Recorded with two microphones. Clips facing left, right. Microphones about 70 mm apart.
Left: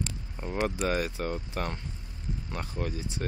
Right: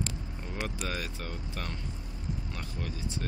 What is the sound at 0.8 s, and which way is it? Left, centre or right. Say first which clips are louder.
Speech: left 7 dB; left.